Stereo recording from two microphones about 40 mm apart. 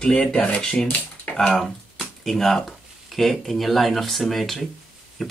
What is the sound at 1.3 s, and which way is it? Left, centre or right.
Speech, left.